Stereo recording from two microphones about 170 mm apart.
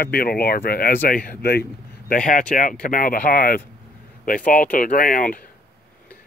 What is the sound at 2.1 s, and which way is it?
Speech, 55° left (ahead or behind).